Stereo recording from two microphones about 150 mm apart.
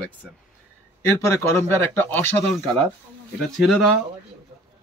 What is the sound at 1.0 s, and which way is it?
Speech, 15° left (ahead or behind).